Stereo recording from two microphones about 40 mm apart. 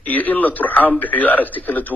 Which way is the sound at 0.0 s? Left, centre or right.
Left.